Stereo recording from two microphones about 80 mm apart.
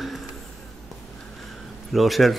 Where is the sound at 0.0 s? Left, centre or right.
Centre.